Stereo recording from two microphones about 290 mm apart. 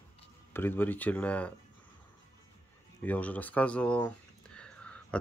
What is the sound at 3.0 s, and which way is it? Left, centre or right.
Speech, centre.